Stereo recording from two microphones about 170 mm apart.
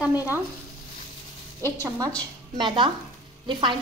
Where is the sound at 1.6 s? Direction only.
15° left (ahead or behind).